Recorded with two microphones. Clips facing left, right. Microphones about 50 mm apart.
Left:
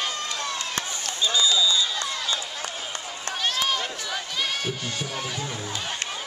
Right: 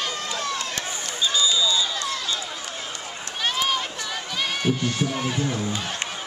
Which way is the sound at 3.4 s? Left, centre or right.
Centre.